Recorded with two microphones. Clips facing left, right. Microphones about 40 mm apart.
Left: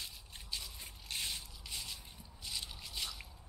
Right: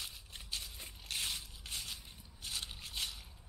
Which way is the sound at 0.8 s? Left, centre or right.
Centre.